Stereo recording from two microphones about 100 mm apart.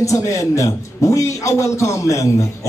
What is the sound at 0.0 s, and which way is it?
A man's voice, 30° left (ahead or behind).